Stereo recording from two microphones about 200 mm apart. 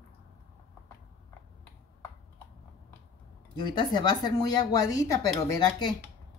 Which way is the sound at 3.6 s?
20° left (ahead or behind).